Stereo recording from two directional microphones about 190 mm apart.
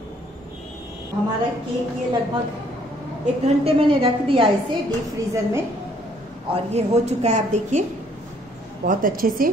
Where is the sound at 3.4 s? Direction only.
30° right (ahead or behind).